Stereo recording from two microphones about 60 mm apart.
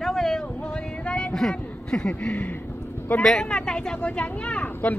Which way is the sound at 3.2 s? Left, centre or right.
Centre.